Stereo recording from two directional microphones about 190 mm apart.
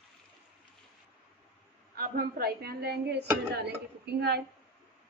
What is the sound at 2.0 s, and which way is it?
Speech, 50° right (ahead or behind).